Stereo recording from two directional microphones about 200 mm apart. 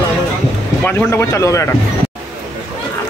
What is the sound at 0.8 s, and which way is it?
Speech, 10° left (ahead or behind).